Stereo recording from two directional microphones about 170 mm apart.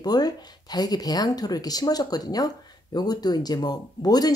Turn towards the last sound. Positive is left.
turn(degrees=20)  # may be behind; listen again after turning